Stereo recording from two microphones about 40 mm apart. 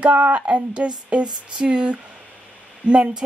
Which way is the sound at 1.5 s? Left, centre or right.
Right.